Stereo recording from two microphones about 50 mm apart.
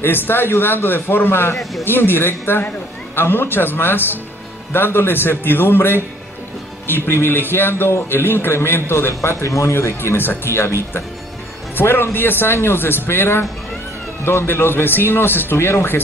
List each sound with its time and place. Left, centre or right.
0.0 s a man's voice: left
11.7 s speech: left